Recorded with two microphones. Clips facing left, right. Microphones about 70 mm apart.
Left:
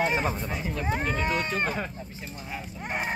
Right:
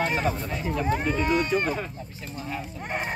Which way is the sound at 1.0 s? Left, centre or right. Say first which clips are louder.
Right 4 dB; centre.